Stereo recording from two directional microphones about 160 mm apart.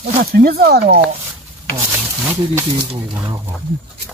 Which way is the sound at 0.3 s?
70° right (ahead or behind).